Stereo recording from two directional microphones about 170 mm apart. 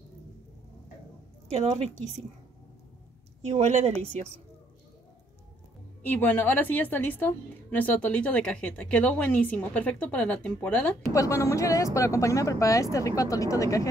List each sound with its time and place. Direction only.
1.5 s a woman's voice: 40° right (ahead or behind)
3.4 s a woman's voice: 40° right (ahead or behind)
6.0 s a woman's voice: 10° left (ahead or behind)
11.1 s a woman's voice: 20° left (ahead or behind)